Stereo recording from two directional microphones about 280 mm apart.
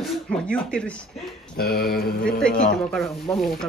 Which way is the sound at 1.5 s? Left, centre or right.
Left.